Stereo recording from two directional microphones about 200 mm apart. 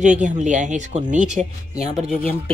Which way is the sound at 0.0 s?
35° right (ahead or behind).